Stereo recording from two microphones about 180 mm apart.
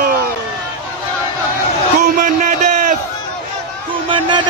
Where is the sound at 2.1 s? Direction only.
45° right (ahead or behind).